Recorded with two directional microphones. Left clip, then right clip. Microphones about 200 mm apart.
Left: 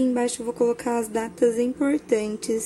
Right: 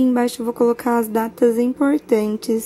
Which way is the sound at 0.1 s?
15° right (ahead or behind).